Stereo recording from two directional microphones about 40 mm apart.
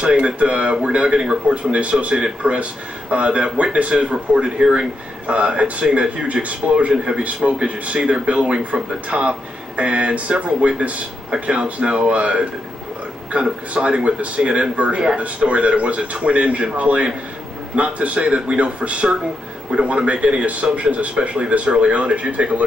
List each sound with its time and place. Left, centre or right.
0.0 s speech: right